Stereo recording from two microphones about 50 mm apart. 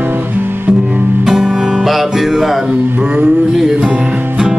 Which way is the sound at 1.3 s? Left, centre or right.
Centre.